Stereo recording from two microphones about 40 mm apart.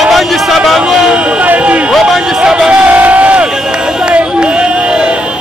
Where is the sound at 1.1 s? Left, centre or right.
Right.